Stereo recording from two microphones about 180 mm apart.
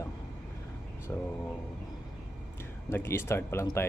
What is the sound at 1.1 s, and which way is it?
Speech, 10° left (ahead or behind).